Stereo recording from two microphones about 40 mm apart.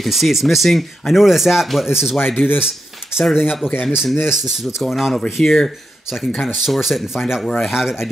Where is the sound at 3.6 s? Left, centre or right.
Left.